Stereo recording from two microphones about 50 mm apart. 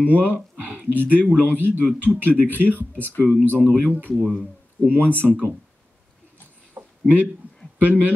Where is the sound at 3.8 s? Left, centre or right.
Right.